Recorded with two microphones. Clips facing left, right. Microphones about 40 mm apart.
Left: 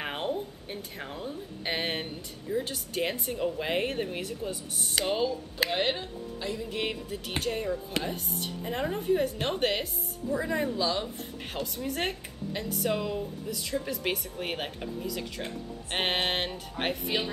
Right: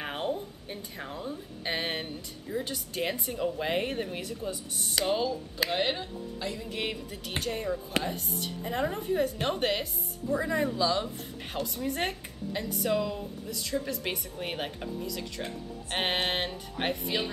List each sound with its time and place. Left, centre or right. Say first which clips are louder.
0.0 s speech: left 1 dB; centre
4.2 s speech: left 1 dB; left
4.9 s speech: even; centre
7.3 s speech: left 1 dB; left
8.8 s speech: left 2 dB; centre